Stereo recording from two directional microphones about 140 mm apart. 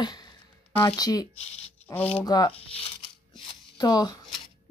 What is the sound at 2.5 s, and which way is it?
Speech, 45° left (ahead or behind).